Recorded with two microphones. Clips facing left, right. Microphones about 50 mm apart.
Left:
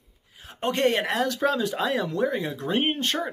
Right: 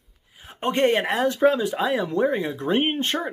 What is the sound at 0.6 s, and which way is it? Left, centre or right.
Speech, right.